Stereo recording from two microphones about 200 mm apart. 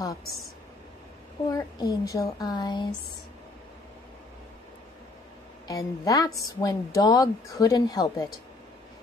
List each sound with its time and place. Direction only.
1.5 s speech: 20° left (ahead or behind)
5.7 s a woman's voice: 15° left (ahead or behind)